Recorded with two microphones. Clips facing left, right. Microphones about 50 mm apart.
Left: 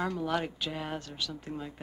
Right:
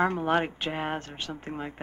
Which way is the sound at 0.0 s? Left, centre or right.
Right.